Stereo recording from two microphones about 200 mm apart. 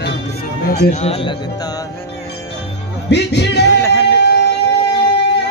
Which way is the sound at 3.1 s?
55° left (ahead or behind).